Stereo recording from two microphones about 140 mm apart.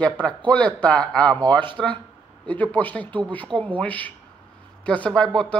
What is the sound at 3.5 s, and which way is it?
Speech, 35° right (ahead or behind).